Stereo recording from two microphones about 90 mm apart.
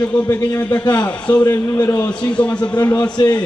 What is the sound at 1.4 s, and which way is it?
Speech, 35° left (ahead or behind).